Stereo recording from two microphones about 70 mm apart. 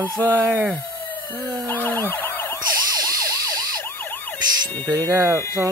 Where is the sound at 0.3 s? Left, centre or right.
Right.